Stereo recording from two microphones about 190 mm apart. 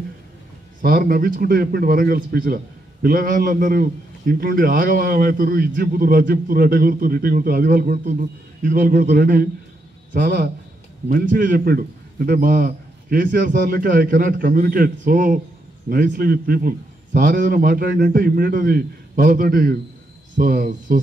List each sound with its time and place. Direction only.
0.8 s a man's voice: 50° right (ahead or behind)